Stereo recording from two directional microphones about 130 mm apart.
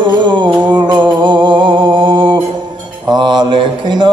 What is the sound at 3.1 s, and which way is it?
Mantra, 35° right (ahead or behind).